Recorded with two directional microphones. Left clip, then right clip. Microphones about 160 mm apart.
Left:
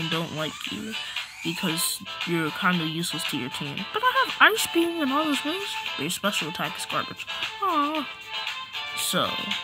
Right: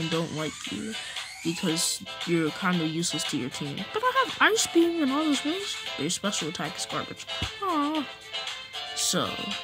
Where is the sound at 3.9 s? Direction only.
5° left (ahead or behind).